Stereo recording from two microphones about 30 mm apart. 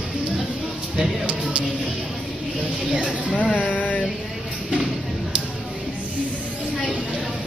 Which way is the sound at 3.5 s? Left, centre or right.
Left.